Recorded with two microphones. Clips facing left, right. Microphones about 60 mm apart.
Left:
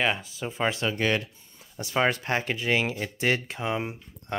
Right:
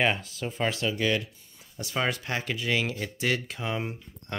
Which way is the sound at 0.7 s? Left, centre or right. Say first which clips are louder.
Left 2 dB; left.